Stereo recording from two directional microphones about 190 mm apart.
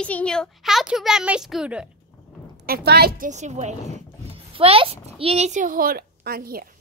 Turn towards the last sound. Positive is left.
turn(degrees=-50)  # may be behind; listen again after turning